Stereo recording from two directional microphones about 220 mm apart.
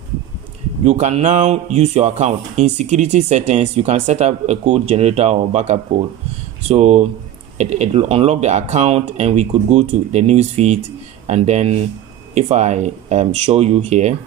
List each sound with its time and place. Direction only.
0.8 s speech: 30° right (ahead or behind)